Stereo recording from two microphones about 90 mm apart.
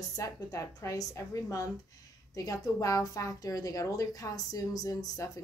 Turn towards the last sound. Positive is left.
turn(degrees=40)  # may be behind; listen again after turning